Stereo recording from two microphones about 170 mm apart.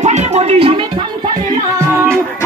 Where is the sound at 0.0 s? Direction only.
40° right (ahead or behind).